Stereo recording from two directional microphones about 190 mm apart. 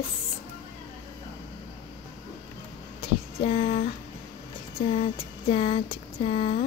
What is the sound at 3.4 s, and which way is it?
Speech, 30° left (ahead or behind).